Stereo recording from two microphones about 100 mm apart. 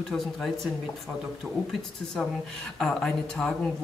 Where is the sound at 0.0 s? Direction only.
5° left (ahead or behind).